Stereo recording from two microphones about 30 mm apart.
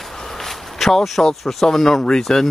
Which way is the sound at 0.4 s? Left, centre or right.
Centre.